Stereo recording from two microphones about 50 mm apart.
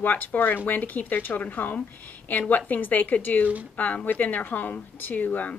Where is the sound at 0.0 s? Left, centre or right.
Left.